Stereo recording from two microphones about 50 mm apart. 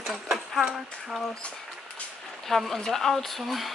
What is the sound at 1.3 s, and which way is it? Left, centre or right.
Speech, centre.